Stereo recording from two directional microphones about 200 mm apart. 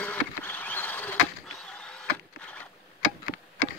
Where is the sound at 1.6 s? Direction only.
5° left (ahead or behind).